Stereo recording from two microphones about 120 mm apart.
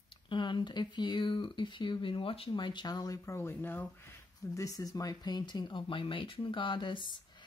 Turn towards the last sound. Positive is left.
turn(degrees=40)  # may be behind; listen again after turning